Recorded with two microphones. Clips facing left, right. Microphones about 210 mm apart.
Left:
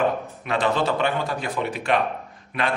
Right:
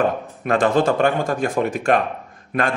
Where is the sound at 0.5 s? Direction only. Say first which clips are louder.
Right 5 dB; 45° right (ahead or behind).